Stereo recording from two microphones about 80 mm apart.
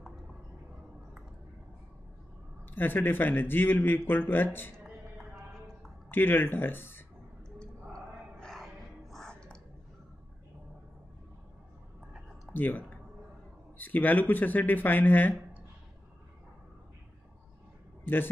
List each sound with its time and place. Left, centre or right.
2.7 s speech: left
5.1 s clip-clop: centre
6.0 s speech: left
8.4 s music: centre
9.1 s a sound: centre
12.5 s speech: left
18.0 s a man's voice: left